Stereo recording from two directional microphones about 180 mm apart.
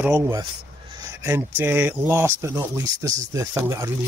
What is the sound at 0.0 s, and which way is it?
Speech, 15° right (ahead or behind).